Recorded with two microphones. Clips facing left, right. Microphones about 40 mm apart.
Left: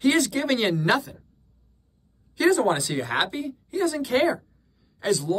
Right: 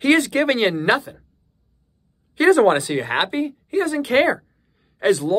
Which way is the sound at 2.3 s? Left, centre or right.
Right.